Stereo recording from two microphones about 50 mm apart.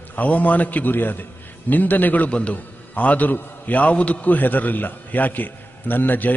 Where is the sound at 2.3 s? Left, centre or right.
Left.